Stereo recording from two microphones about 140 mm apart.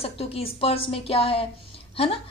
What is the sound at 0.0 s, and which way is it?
A woman's voice, 45° left (ahead or behind).